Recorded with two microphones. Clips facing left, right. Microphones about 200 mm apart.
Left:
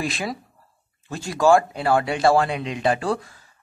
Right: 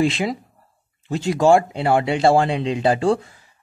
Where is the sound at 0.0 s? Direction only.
25° right (ahead or behind).